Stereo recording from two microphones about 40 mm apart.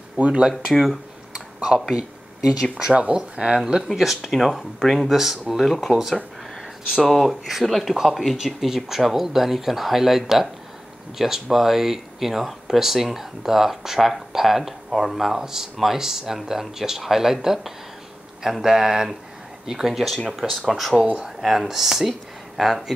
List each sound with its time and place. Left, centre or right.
0.3 s speech: centre
5.1 s speech: centre
7.0 s speech: centre
20.2 s speech: centre